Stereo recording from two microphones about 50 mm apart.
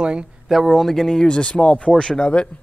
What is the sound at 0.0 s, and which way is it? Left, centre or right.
Speech, centre.